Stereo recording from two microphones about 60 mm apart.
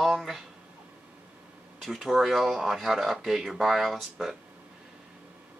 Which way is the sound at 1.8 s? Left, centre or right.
Centre.